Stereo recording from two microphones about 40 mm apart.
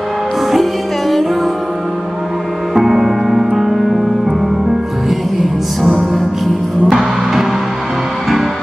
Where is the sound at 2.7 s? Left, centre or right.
Centre.